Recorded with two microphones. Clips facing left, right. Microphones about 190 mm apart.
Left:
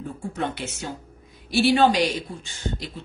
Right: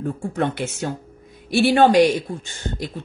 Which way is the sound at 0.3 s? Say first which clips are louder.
Right 4 dB; 55° right (ahead or behind).